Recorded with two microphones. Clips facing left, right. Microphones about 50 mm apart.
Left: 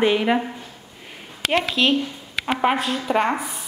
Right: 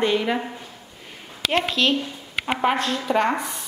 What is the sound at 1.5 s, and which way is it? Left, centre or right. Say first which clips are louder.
A woman's voice: left 2 dB; centre.